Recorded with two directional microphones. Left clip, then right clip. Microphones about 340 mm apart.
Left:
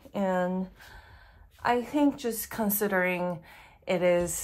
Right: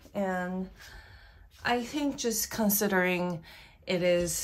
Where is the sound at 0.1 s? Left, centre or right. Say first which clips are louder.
Left 4 dB; centre.